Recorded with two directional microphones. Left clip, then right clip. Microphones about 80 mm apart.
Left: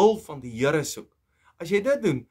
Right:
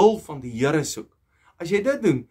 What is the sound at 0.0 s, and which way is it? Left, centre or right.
Speech, left.